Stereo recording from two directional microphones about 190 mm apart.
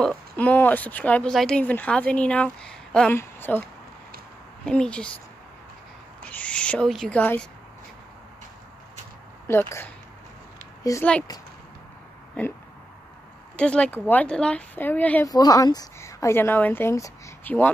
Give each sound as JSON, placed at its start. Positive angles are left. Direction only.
{"t": 0.0, "sound": "speech", "side_deg": 5}
{"t": 4.6, "sound": "speech", "side_deg": 5}
{"t": 6.3, "sound": "speech", "side_deg": 5}
{"t": 9.5, "sound": "speech", "side_deg": 15}
{"t": 12.4, "sound": "a sound", "side_deg": 5}
{"t": 13.6, "sound": "speech", "side_deg": 5}
{"t": 15.3, "sound": "speech", "side_deg": 20}